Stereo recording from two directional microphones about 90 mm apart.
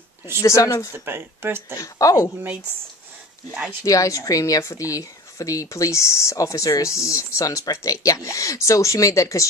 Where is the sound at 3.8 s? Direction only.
40° left (ahead or behind).